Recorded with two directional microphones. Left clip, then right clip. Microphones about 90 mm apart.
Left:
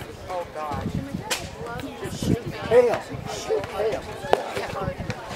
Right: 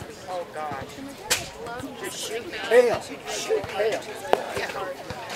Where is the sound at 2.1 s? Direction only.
35° right (ahead or behind).